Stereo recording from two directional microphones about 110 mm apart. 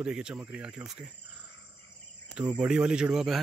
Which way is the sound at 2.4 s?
10° right (ahead or behind).